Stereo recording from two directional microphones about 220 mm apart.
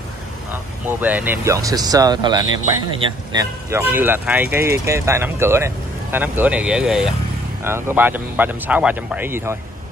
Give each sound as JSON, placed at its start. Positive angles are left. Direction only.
{"t": 0.5, "sound": "speech", "side_deg": -10}